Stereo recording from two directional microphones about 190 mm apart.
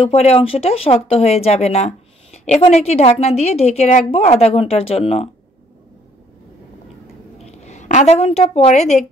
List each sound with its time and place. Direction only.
0.0 s speech: 35° left (ahead or behind)
7.4 s a woman's voice: 35° left (ahead or behind)